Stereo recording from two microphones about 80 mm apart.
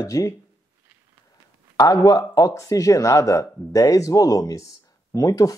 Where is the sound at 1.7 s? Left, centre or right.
Left.